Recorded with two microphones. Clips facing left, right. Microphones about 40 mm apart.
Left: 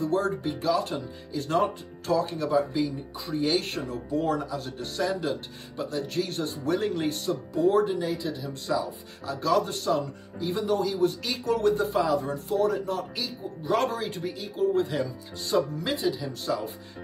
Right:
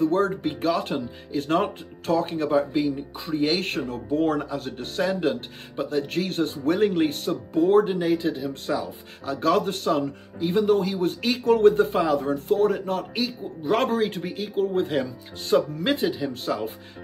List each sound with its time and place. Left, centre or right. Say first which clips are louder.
0.0 s speech: right 4 dB; right